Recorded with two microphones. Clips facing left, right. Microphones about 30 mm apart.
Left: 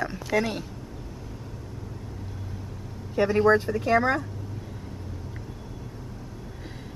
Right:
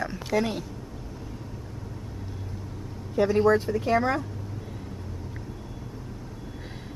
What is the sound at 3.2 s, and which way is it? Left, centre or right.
Speech, left.